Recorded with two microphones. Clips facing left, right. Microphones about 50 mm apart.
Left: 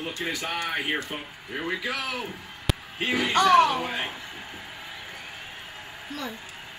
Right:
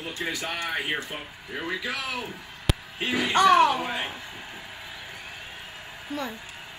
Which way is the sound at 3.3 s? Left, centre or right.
Centre.